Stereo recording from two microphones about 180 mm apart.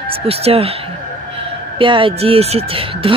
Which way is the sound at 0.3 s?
35° right (ahead or behind).